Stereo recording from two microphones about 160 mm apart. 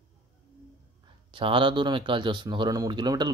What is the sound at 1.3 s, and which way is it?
Speech, 35° right (ahead or behind).